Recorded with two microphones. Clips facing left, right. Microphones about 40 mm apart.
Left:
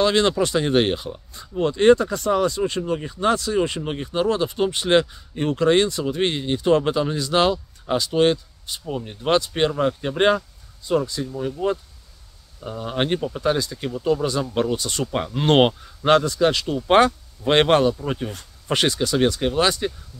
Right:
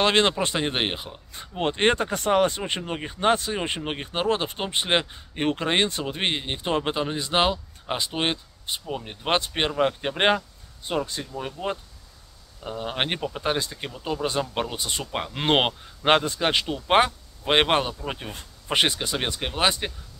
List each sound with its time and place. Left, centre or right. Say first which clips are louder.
0.0 s speech: left 2 dB; right
1.3 s speech: left 3 dB; right
5.3 s speech: left 6 dB; right
12.6 s speech: left 3 dB; right
13.9 s speech: left 5 dB; centre
16.1 s speech: left 4 dB; right
16.7 s speech: left 4 dB; centre